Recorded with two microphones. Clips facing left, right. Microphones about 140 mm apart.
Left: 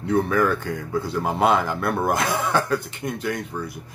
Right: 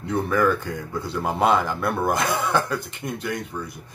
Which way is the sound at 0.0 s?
Centre (ahead or behind).